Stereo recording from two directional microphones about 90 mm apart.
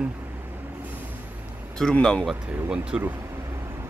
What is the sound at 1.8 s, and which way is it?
Speech, 10° left (ahead or behind).